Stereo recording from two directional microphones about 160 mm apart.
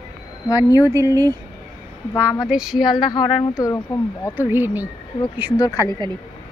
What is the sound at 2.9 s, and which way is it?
Speech, 30° left (ahead or behind).